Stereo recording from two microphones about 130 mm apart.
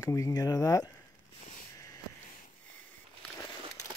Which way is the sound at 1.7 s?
25° left (ahead or behind).